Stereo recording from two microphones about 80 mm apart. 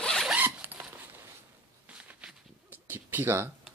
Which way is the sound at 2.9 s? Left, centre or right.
Right.